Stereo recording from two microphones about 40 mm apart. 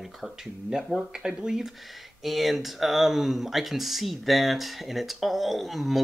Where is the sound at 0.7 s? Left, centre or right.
Right.